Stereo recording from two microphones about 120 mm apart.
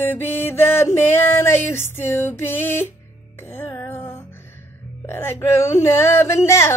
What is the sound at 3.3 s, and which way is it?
Music, 20° left (ahead or behind).